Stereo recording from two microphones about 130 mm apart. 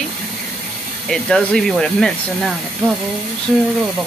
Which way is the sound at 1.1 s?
5° left (ahead or behind).